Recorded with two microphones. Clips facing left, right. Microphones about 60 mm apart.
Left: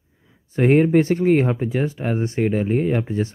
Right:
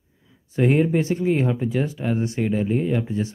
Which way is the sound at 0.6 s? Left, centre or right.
Left.